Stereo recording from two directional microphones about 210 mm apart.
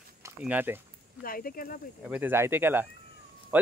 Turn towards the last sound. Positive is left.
turn(degrees=-10)  # may be behind; listen again after turning